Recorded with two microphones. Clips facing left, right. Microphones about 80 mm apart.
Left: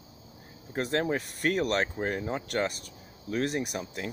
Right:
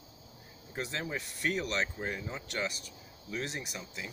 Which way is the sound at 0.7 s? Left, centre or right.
Left.